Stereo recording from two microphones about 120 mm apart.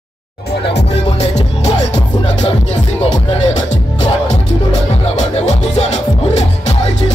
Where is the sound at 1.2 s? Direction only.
65° left (ahead or behind).